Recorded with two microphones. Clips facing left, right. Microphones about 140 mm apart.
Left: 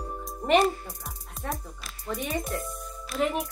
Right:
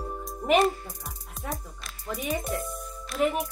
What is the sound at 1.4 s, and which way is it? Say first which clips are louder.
Speech: left 1 dB; centre (ahead or behind).